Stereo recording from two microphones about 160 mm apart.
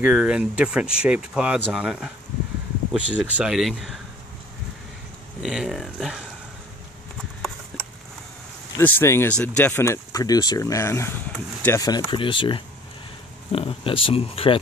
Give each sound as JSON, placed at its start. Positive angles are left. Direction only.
{"t": 0.0, "sound": "speech", "side_deg": -5}
{"t": 5.4, "sound": "speech", "side_deg": 0}
{"t": 7.7, "sound": "a sound", "side_deg": 0}
{"t": 8.7, "sound": "speech", "side_deg": 15}